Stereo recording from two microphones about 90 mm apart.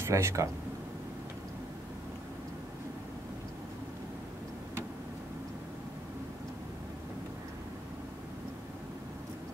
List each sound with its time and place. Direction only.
0.0 s speech: 30° right (ahead or behind)